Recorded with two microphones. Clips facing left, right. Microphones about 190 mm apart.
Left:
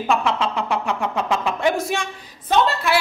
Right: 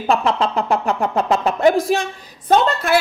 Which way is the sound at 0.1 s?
35° right (ahead or behind).